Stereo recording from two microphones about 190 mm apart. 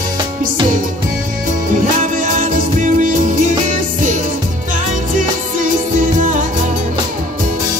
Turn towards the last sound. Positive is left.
turn(degrees=-45)  # may be behind; listen again after turning